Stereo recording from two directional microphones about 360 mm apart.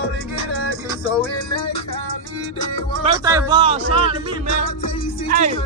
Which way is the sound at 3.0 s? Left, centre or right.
Centre.